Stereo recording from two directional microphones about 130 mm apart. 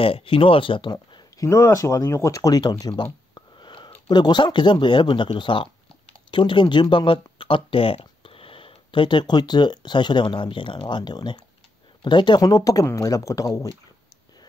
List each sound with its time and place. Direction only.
0.0 s speech: 45° left (ahead or behind)
1.4 s speech: 20° left (ahead or behind)